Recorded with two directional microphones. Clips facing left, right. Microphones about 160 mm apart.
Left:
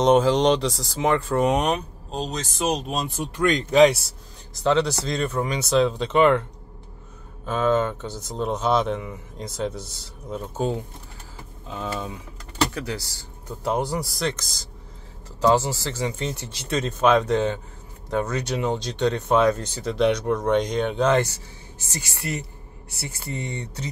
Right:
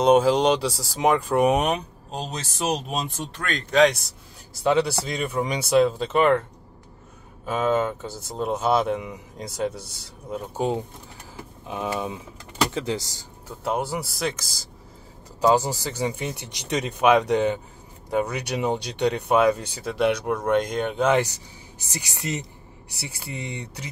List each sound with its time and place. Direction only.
0.0 s speech: 10° right (ahead or behind)
3.3 s speech: 15° left (ahead or behind)
4.6 s speech: 10° right (ahead or behind)
7.4 s speech: 10° right (ahead or behind)
13.5 s speech: 5° right (ahead or behind)